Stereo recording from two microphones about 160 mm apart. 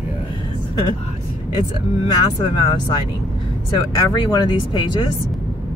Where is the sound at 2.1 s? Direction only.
35° left (ahead or behind).